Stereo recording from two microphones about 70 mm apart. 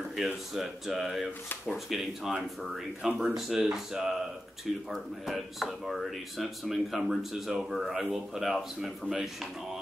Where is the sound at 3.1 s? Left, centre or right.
Centre.